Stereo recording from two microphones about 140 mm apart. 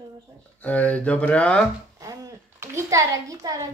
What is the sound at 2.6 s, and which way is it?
A child's voice, 20° right (ahead or behind).